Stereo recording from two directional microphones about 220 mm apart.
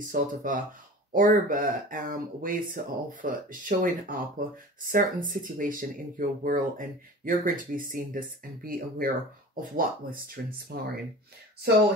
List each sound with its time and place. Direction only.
0.1 s speech: 40° right (ahead or behind)